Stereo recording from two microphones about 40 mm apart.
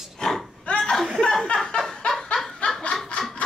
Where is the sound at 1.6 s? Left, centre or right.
Centre.